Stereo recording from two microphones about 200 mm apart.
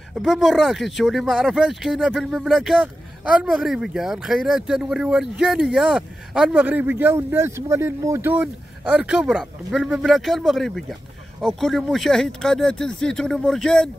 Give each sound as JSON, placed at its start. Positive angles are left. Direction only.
{"t": 0.1, "sound": "speech", "side_deg": 0}